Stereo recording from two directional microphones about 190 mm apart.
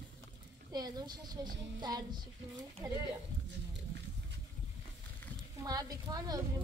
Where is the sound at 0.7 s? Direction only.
20° right (ahead or behind).